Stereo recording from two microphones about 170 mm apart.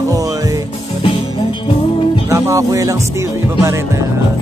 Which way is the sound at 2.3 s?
20° right (ahead or behind).